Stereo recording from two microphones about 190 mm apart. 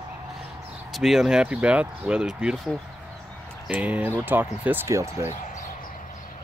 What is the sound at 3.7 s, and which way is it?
Speech, 10° right (ahead or behind).